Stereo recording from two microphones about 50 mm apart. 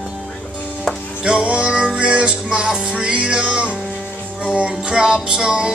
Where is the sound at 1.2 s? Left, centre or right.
Centre.